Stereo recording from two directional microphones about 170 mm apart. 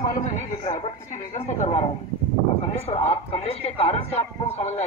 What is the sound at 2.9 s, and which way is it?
Speech, 35° left (ahead or behind).